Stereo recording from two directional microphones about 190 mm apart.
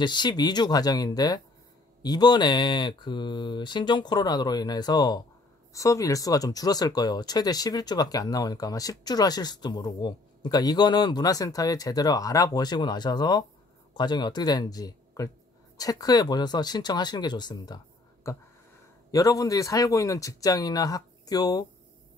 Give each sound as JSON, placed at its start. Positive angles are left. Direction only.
{"t": 0.0, "sound": "speech", "side_deg": 25}